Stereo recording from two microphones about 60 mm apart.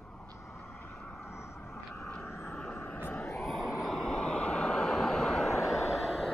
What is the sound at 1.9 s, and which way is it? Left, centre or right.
Vehicle, centre.